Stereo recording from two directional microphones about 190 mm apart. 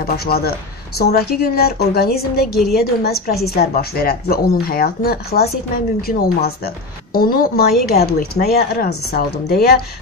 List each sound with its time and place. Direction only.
0.0 s speech: 55° left (ahead or behind)